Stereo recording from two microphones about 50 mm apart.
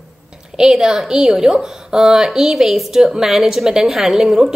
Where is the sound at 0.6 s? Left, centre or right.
Centre.